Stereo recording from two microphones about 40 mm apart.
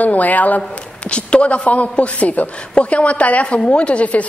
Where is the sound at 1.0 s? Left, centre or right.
Left.